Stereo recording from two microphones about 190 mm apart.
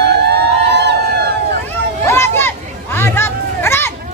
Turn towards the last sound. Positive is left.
turn(degrees=10)  # may be behind; listen again after turning